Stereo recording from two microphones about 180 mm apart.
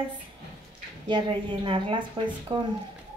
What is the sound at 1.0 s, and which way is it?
A woman's voice, 25° right (ahead or behind).